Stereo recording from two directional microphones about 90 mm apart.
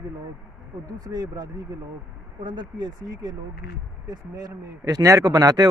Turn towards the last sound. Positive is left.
turn(degrees=-45)  # may be behind; listen again after turning